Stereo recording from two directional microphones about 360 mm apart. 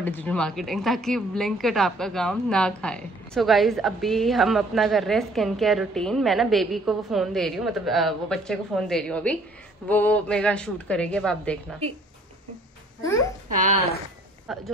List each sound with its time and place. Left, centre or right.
0.0 s speech: centre
13.5 s speech: right
14.5 s speech: centre